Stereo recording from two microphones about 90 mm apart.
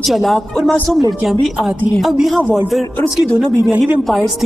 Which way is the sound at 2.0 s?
Centre (ahead or behind).